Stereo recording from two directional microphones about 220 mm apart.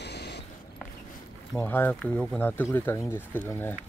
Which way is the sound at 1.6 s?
10° left (ahead or behind).